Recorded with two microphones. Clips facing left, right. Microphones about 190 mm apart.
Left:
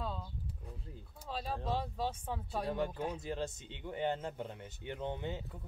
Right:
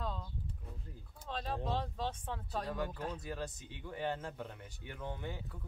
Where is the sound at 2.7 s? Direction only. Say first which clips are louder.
Left 5 dB; 25° left (ahead or behind).